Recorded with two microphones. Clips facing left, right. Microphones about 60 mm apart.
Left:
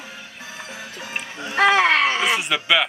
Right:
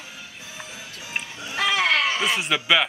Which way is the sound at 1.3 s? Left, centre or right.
Left.